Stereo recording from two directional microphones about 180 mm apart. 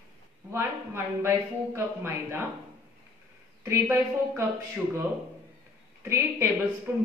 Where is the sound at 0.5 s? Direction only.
15° right (ahead or behind).